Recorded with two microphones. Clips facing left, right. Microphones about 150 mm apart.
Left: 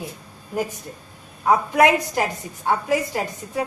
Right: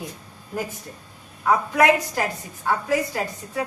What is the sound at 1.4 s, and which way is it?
A woman's voice, 15° left (ahead or behind).